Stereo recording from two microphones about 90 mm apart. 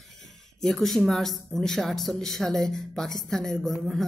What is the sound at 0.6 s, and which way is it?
Speech, centre (ahead or behind).